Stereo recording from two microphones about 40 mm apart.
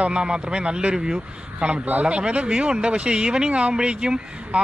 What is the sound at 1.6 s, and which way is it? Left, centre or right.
Speech, right.